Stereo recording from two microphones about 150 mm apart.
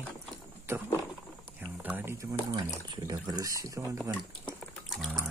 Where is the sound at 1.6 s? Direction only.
10° right (ahead or behind).